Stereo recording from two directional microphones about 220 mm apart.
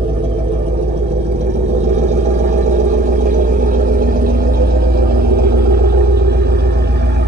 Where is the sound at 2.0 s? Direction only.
35° right (ahead or behind).